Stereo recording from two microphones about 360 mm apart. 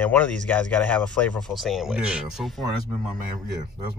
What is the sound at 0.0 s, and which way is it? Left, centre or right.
Speech, centre.